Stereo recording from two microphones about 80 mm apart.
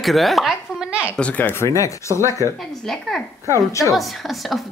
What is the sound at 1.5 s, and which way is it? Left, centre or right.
Speech, left.